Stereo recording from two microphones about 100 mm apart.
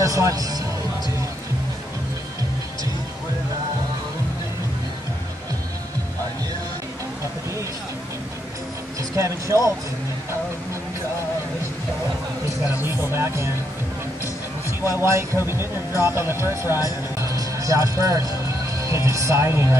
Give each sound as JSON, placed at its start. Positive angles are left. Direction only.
{"t": 0.0, "sound": "speech", "side_deg": -35}
{"t": 9.1, "sound": "speech", "side_deg": -30}
{"t": 12.7, "sound": "speech", "side_deg": -25}
{"t": 14.9, "sound": "speech", "side_deg": -30}
{"t": 17.2, "sound": "music", "side_deg": -30}
{"t": 18.8, "sound": "speech", "side_deg": -30}